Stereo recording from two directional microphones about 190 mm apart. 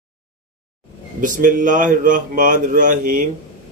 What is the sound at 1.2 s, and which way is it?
Speech, 45° right (ahead or behind).